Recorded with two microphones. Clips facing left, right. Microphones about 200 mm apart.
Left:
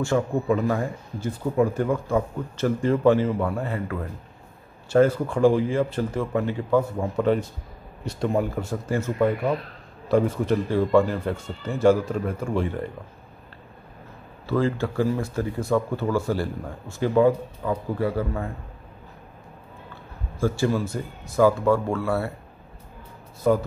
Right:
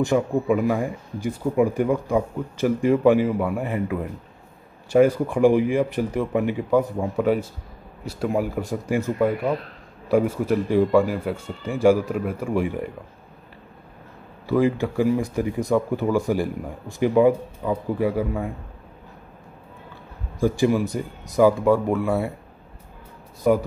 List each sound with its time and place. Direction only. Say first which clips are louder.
0.0 s speech: right 3 dB; 15° right (ahead or behind)
14.4 s speech: right 3 dB; 15° right (ahead or behind)
20.3 s speech: right 3 dB; 15° right (ahead or behind)
23.5 s speech: right 2 dB; 15° right (ahead or behind)